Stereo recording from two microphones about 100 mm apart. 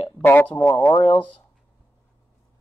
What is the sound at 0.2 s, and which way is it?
Speech, 20° left (ahead or behind).